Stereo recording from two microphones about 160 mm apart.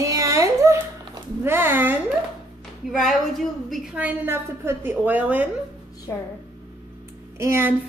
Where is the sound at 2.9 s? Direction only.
Centre (ahead or behind).